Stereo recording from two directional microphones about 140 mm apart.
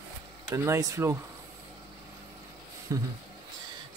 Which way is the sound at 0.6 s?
25° right (ahead or behind).